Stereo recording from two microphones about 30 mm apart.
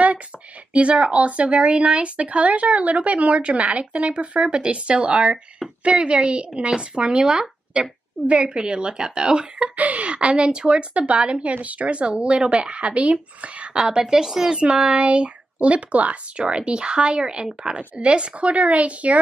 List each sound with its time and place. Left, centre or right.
1.1 s a woman's voice: right
9.8 s a woman's voice: right
10.0 s a woman's voice: right
10.9 s speech: right
11.1 s a woman's voice: right
11.4 s a woman's voice: right
13.7 s speech: right
14.9 s speech: right
16.3 s a woman's voice: right
18.4 s speech: right